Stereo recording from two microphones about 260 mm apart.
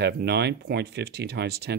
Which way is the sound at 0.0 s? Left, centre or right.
Right.